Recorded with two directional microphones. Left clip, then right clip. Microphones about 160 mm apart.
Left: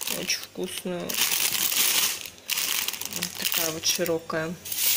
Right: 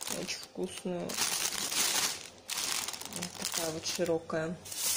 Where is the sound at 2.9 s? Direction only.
25° right (ahead or behind).